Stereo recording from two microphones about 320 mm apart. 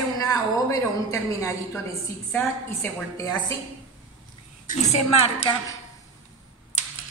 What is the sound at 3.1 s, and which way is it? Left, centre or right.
Speech, centre.